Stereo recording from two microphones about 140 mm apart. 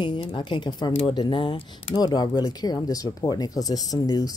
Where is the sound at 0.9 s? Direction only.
50° left (ahead or behind).